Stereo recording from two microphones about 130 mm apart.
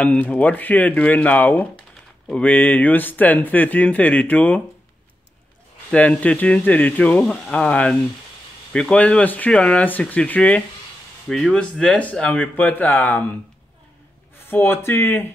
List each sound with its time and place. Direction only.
0.0 s speech: 10° left (ahead or behind)
5.9 s speech: 10° left (ahead or behind)
14.5 s speech: 15° left (ahead or behind)